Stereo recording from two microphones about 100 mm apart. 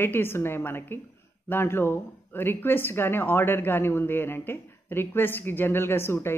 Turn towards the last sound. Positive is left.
turn(degrees=25)  # may be behind; listen again after turning